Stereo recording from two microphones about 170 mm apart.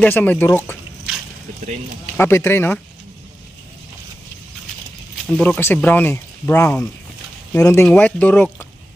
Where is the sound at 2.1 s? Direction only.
15° left (ahead or behind).